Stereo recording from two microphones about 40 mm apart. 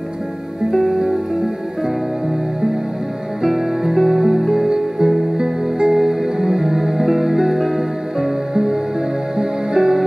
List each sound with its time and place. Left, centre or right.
0.7 s music: centre
3.4 s music: centre